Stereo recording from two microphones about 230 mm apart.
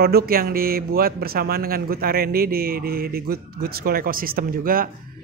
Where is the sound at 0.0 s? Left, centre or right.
Right.